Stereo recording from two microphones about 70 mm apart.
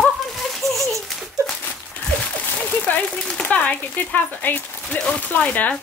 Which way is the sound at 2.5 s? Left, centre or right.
Left.